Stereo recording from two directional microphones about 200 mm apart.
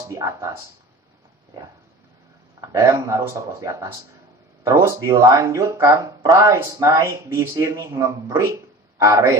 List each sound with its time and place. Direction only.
0.1 s speech: 15° right (ahead or behind)
2.6 s speech: 15° right (ahead or behind)